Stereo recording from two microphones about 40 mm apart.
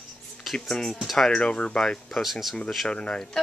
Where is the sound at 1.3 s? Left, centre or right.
Left.